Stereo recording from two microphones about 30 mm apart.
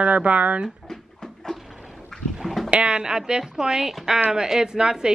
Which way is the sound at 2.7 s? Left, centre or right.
Right.